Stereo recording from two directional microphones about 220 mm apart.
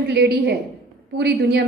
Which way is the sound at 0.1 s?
50° right (ahead or behind).